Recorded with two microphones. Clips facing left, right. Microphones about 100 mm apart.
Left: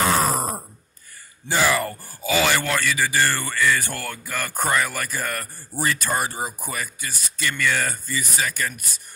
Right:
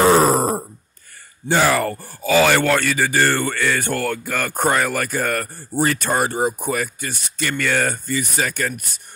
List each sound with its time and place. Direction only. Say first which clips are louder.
0.0 s grunt: right 7 dB; 40° right (ahead or behind)
1.5 s speech: right 4 dB; 45° right (ahead or behind)